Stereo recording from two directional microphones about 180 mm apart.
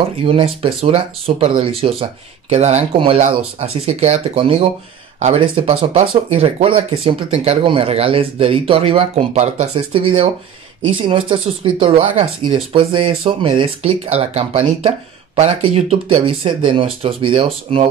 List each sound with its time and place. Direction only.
0.2 s speech: 30° right (ahead or behind)